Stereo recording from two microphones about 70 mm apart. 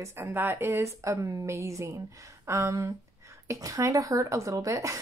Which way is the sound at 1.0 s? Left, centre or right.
Right.